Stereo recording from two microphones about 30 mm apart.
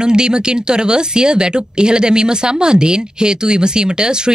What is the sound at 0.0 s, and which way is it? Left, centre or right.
Speech, right.